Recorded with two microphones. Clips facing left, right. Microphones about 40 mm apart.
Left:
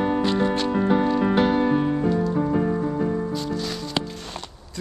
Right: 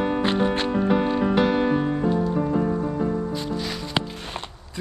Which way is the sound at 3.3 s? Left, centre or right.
Centre.